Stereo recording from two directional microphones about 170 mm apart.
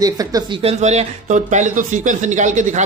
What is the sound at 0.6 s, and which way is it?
Speech, 40° right (ahead or behind).